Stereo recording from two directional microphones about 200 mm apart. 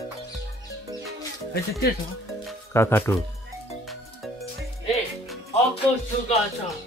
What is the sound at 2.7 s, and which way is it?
Speech, 10° left (ahead or behind).